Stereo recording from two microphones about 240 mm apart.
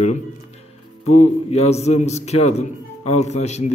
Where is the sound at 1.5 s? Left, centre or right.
Left.